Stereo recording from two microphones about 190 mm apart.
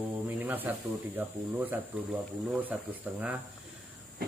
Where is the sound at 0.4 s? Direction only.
10° right (ahead or behind).